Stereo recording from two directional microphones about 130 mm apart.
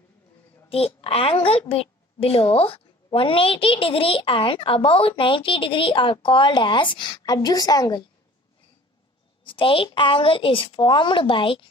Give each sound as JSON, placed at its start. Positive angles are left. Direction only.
{"t": 0.7, "sound": "a woman's voice", "side_deg": 50}
{"t": 9.4, "sound": "a woman's voice", "side_deg": 40}